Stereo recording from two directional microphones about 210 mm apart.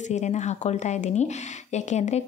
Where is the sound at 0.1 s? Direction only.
35° left (ahead or behind).